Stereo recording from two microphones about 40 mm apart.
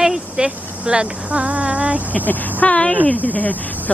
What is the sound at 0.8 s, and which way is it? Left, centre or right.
Speech, right.